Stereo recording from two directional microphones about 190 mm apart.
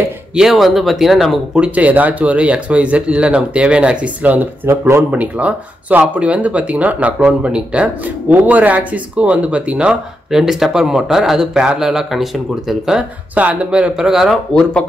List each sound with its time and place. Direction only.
0.3 s speech: centre (ahead or behind)